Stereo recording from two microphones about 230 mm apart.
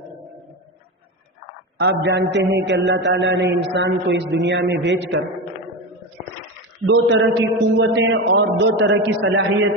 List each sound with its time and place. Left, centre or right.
1.8 s a man's voice: right
6.9 s a man's voice: right